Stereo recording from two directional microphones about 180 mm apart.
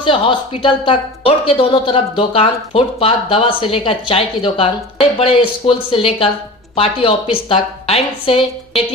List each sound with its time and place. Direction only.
0.0 s a woman's voice: 30° left (ahead or behind)